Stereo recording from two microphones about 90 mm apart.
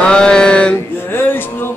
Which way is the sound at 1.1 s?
25° left (ahead or behind).